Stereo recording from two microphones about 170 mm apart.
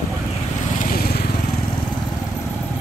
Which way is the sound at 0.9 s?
65° left (ahead or behind).